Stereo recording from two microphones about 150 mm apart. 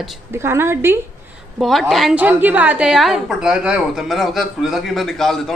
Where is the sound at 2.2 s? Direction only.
10° right (ahead or behind).